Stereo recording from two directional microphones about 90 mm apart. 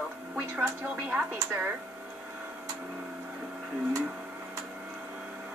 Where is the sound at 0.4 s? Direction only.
20° right (ahead or behind).